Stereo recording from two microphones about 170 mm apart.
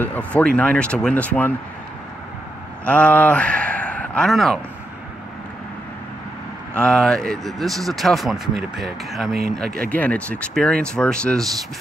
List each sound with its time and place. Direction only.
0.0 s speech: 10° left (ahead or behind)
2.8 s speech: 10° left (ahead or behind)
6.7 s speech: 5° left (ahead or behind)
9.3 s speech: 65° right (ahead or behind)
9.8 s speech: 10° left (ahead or behind)